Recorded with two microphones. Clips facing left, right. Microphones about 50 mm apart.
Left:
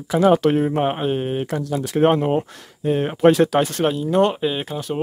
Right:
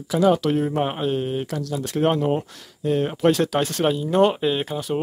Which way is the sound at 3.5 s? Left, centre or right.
Centre.